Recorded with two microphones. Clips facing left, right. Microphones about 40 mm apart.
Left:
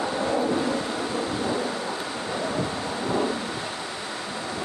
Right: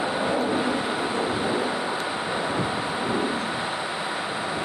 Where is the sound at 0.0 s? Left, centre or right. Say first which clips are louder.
Even; right.